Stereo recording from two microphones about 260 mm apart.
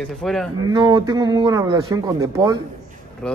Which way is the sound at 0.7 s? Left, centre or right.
Centre.